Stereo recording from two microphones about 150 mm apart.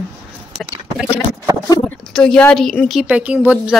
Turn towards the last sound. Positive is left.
turn(degrees=-10)  # may be behind; listen again after turning